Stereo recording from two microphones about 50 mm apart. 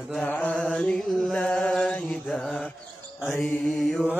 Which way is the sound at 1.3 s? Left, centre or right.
Centre.